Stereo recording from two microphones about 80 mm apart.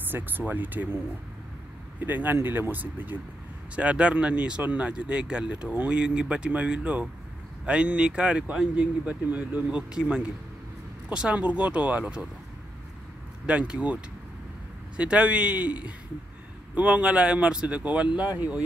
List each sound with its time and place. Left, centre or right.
0.1 s speech: right
2.0 s speech: right
13.5 s speech: centre
15.0 s speech: centre